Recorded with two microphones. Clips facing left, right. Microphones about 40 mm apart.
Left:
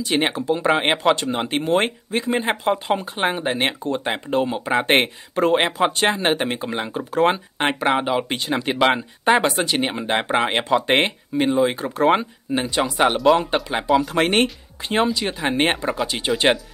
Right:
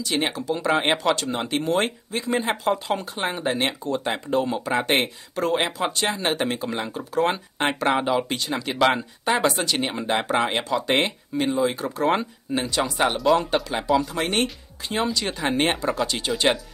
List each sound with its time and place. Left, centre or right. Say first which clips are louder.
0.0 s speech: left 4 dB; left
8.3 s speech: left 4 dB; left
14.1 s speech: left 6 dB; left
15.1 s speech: left 2 dB; centre